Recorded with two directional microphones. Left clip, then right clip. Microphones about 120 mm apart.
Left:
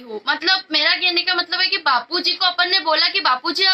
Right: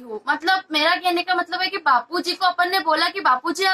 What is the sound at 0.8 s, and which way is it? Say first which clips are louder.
Speech: left 2 dB; 45° left (ahead or behind).